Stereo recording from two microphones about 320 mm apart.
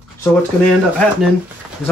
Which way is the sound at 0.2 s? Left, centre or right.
Centre.